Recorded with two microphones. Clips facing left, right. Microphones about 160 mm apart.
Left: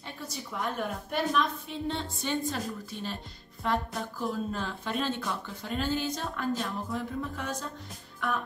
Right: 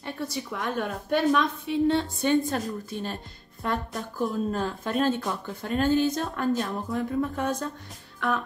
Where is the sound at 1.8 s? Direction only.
60° right (ahead or behind).